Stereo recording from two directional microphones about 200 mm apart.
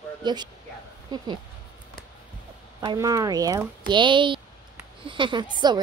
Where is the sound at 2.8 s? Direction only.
15° right (ahead or behind).